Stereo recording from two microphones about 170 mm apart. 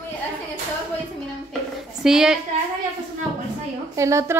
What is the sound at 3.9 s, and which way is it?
Speech, 15° right (ahead or behind).